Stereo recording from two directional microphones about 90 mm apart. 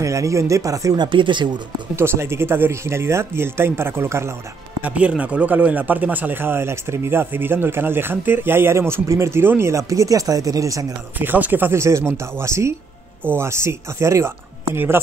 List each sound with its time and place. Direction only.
0.0 s speech: 35° right (ahead or behind)
1.0 s speech: 60° right (ahead or behind)
2.0 s speech: 30° right (ahead or behind)
4.8 s speech: 15° right (ahead or behind); by 10.9 s 40° right (ahead or behind)
11.1 s speech: 20° right (ahead or behind)